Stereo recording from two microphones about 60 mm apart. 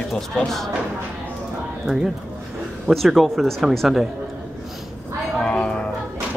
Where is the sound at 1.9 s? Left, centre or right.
Centre.